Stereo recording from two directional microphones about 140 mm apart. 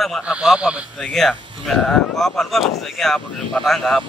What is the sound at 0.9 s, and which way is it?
Speech, 5° left (ahead or behind).